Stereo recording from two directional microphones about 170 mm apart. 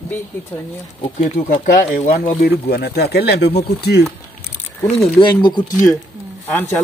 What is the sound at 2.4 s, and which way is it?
Speech, 75° left (ahead or behind).